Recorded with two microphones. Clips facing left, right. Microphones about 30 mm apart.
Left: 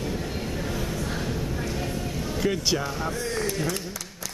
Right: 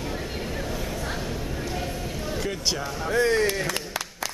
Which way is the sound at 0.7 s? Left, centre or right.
Centre.